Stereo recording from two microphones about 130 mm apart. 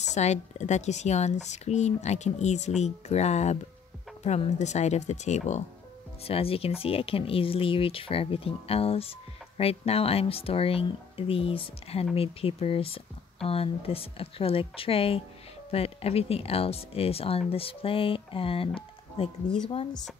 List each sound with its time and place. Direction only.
0.1 s speech: 60° left (ahead or behind)
6.2 s speech: 45° left (ahead or behind)
18.8 s music: 45° left (ahead or behind)